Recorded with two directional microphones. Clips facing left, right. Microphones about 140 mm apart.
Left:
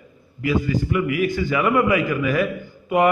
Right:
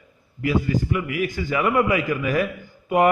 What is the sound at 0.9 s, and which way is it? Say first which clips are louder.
A man's voice: left 4 dB; 35° right (ahead or behind).